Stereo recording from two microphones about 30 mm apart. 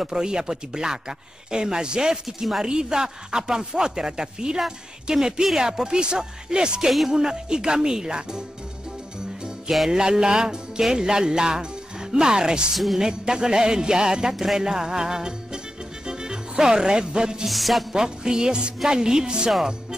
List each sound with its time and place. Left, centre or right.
0.0 s speech: right
2.2 s music: centre
2.6 s speech: right
5.1 s speech: centre
9.8 s speech: right
12.7 s music: centre
13.2 s speech: right
14.3 s music: centre
14.6 s speech: right
17.5 s music: centre
17.9 s speech: right